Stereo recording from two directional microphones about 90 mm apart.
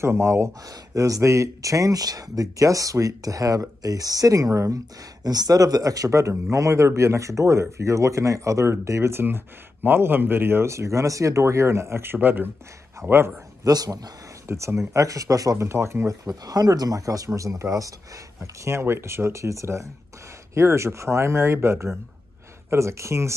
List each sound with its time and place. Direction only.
0.0 s speech: 30° right (ahead or behind)
13.7 s a man's voice: 45° right (ahead or behind)
14.5 s speech: 30° right (ahead or behind)
16.3 s speech: 45° right (ahead or behind)